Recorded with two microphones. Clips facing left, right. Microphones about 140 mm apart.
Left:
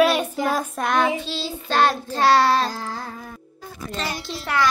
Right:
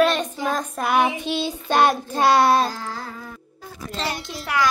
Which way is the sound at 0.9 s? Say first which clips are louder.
Right 2 dB; 15° right (ahead or behind).